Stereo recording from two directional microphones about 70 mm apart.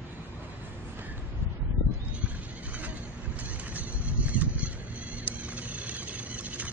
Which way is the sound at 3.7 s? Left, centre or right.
Right.